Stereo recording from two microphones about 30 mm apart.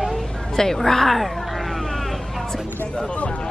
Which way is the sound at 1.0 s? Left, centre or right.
Centre.